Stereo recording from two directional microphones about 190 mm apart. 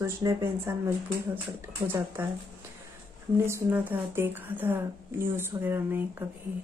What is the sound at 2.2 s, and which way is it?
Speech, 10° right (ahead or behind).